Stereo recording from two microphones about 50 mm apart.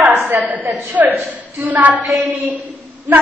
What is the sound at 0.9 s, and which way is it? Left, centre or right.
A woman's voice, right.